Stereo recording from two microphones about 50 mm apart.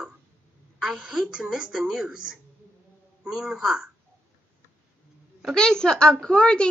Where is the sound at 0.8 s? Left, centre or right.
Centre.